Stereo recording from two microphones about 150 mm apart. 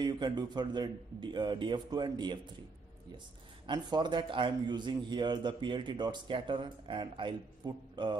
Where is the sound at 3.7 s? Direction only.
30° right (ahead or behind).